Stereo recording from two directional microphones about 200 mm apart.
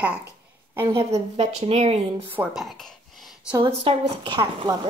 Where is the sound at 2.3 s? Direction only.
5° right (ahead or behind).